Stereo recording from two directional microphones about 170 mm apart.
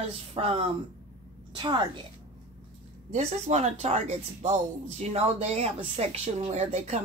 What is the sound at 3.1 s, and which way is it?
Speech, 40° right (ahead or behind).